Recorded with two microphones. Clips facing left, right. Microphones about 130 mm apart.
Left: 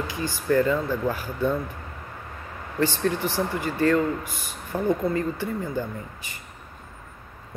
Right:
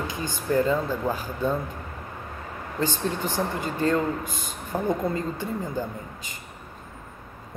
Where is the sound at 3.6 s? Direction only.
20° right (ahead or behind).